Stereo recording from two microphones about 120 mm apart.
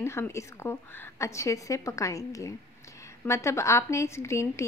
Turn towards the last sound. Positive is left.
turn(degrees=25)  # may be behind; listen again after turning